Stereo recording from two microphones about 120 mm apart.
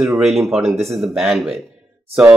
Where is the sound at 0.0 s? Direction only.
Centre (ahead or behind).